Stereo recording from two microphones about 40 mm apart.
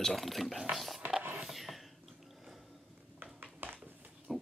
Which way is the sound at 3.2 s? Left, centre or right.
Right.